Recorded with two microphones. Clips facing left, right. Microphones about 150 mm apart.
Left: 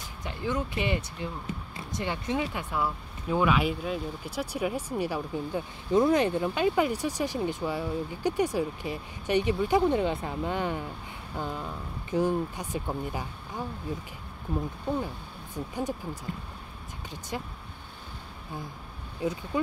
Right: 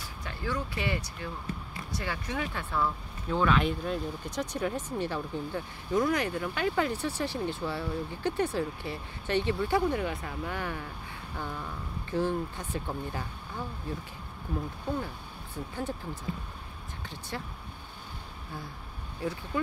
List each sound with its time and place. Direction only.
0.2 s speech: 20° left (ahead or behind)
5.9 s speech: 25° left (ahead or behind)
15.5 s speech: 15° left (ahead or behind)
17.3 s speech: 15° left (ahead or behind)
19.2 s speech: 15° left (ahead or behind)